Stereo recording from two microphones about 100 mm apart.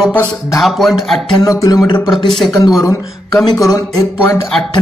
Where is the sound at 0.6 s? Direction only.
Centre (ahead or behind).